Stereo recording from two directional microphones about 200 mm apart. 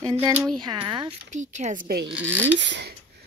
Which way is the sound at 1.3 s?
35° right (ahead or behind).